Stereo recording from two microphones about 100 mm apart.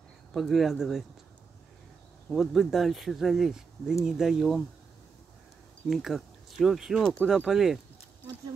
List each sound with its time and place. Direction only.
0.3 s speech: centre (ahead or behind)
2.3 s speech: centre (ahead or behind)
5.9 s speech: centre (ahead or behind)
7.0 s speech: 10° left (ahead or behind)
7.2 s speech: 5° right (ahead or behind)